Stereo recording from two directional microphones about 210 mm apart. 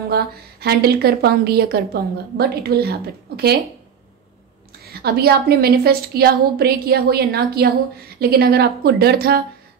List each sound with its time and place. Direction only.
0.1 s a woman's voice: 50° right (ahead or behind)
4.8 s a woman's voice: 50° right (ahead or behind)